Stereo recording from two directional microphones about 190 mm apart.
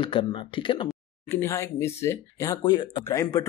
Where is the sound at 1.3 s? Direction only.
15° left (ahead or behind).